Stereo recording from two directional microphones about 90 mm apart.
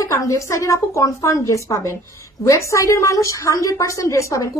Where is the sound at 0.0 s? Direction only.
35° left (ahead or behind).